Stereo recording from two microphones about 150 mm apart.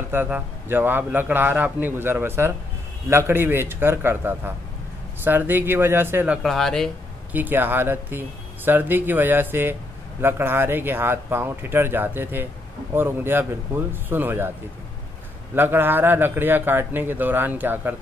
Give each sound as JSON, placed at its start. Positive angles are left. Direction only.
{"t": 0.1, "sound": "a man's voice", "side_deg": -15}
{"t": 6.4, "sound": "speech", "side_deg": 0}
{"t": 7.3, "sound": "a man's voice", "side_deg": -15}
{"t": 15.5, "sound": "a man's voice", "side_deg": -15}